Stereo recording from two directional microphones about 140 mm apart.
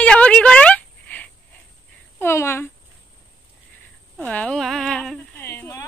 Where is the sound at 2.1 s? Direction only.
20° left (ahead or behind).